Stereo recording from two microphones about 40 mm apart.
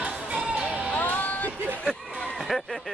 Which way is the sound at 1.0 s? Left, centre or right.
Left.